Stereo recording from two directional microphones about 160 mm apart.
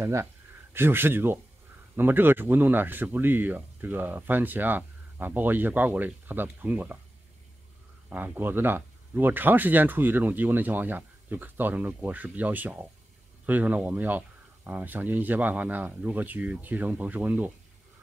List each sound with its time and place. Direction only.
0.0 s speech: 15° right (ahead or behind)
8.1 s speech: 10° right (ahead or behind)